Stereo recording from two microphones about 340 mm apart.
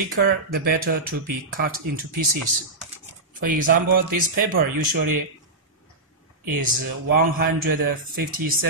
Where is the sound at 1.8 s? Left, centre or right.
Right.